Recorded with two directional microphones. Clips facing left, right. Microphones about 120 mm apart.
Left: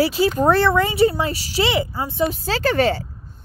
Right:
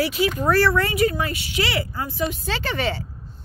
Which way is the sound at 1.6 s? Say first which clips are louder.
Left 5 dB; 20° left (ahead or behind).